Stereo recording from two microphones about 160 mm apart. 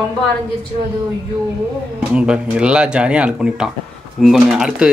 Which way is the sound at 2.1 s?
5° right (ahead or behind).